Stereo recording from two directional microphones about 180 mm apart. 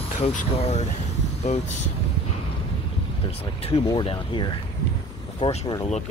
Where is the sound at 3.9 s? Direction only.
25° left (ahead or behind).